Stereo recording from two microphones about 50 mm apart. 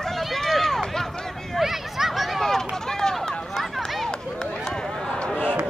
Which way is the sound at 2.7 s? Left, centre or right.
Centre.